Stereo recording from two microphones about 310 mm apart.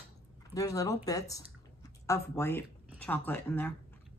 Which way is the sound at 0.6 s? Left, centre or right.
Centre.